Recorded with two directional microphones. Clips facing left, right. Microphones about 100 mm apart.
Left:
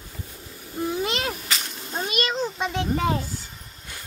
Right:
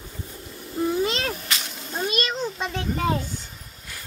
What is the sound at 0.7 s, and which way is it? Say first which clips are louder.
Babbling: right 3 dB; centre (ahead or behind).